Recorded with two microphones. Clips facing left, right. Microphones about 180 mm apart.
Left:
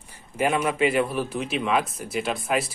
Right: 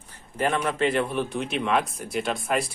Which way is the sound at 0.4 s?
5° left (ahead or behind).